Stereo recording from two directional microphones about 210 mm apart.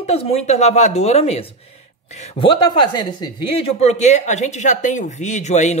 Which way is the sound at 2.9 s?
20° left (ahead or behind).